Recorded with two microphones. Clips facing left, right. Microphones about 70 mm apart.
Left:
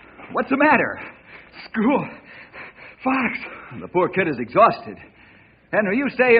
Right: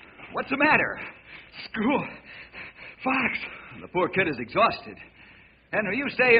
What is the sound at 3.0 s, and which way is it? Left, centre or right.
A man's voice, centre.